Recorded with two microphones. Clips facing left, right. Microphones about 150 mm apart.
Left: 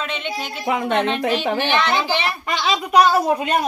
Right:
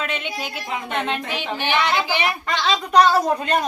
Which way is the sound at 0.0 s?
5° right (ahead or behind).